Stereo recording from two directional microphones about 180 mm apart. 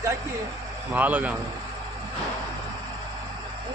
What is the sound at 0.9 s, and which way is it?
Speech, 10° right (ahead or behind).